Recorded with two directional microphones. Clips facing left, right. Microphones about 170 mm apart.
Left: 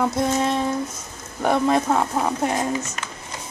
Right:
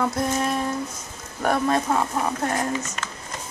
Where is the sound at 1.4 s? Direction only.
5° left (ahead or behind).